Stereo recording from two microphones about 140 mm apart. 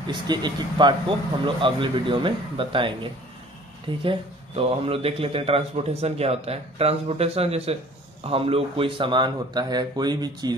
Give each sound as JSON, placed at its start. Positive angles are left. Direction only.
{"t": 0.0, "sound": "speech", "side_deg": -30}